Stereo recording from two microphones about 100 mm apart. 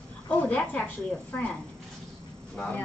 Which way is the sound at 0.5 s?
15° left (ahead or behind).